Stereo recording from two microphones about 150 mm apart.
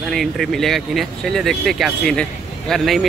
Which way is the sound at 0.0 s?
Centre (ahead or behind).